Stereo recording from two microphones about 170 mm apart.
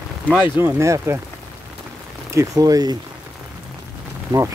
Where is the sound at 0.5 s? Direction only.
15° right (ahead or behind).